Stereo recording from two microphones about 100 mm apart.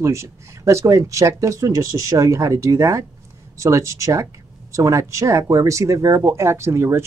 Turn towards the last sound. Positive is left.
turn(degrees=-25)  # may be behind; listen again after turning